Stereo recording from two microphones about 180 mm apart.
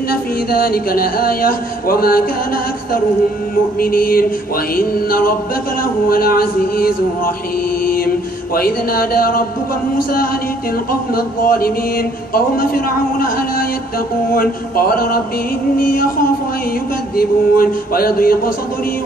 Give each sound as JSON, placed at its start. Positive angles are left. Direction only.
{"t": 0.1, "sound": "a man's voice", "side_deg": 55}
{"t": 3.8, "sound": "mantra", "side_deg": 55}
{"t": 4.7, "sound": "a man's voice", "side_deg": 55}
{"t": 7.8, "sound": "mantra", "side_deg": 55}
{"t": 8.5, "sound": "a man's voice", "side_deg": 55}
{"t": 10.9, "sound": "a man's voice", "side_deg": 55}
{"t": 15.8, "sound": "mantra", "side_deg": 55}
{"t": 17.2, "sound": "a man's voice", "side_deg": 55}